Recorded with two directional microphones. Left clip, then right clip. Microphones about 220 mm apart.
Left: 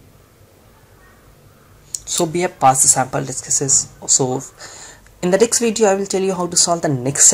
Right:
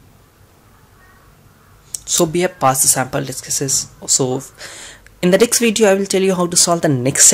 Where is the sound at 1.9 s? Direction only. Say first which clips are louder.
Right 3 dB; 20° right (ahead or behind).